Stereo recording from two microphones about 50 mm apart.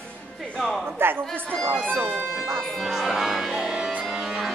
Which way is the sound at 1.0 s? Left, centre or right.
Right.